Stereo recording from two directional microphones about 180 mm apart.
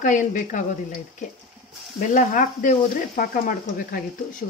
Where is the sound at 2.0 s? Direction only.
45° left (ahead or behind).